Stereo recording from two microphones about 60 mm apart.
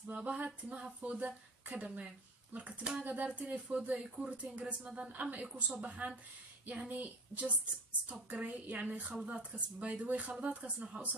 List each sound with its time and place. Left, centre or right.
0.1 s speech: right